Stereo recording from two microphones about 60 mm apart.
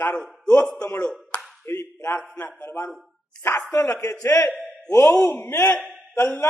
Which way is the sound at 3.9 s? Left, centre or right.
Left.